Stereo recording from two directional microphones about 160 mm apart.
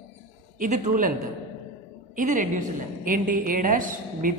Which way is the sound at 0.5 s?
50° right (ahead or behind).